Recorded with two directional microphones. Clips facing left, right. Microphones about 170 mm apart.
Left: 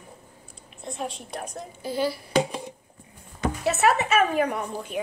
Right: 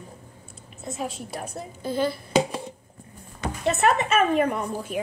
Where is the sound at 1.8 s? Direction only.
10° left (ahead or behind).